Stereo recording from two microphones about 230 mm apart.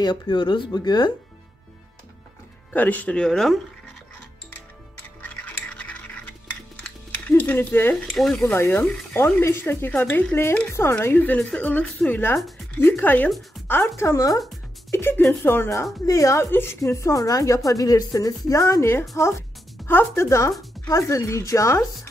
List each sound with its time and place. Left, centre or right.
0.0 s speech: centre
2.7 s speech: centre
5.2 s music: centre
12.9 s a woman's voice: centre